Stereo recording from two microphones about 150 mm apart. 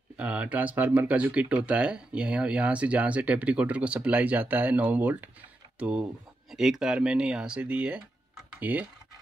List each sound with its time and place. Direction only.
0.2 s speech: 10° right (ahead or behind)